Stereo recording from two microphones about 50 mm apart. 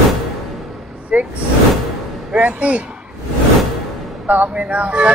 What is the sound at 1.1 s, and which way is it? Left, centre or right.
Speech, right.